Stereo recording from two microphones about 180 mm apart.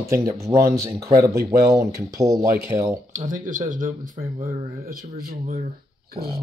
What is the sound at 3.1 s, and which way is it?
Speech, 45° right (ahead or behind).